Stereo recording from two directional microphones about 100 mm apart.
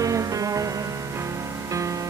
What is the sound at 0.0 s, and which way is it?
Music, 35° right (ahead or behind).